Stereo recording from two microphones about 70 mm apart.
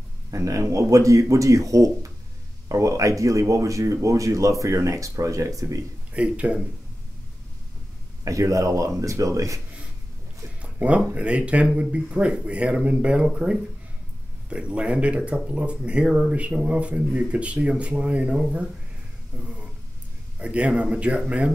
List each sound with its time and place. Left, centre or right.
0.3 s speech: right
6.1 s speech: centre
8.2 s speech: right
10.6 s a sound: centre
11.1 s speech: centre
19.4 s a sound: centre
20.3 s speech: centre